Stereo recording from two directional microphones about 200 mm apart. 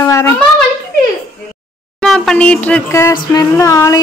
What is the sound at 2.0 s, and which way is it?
A woman's voice, centre (ahead or behind).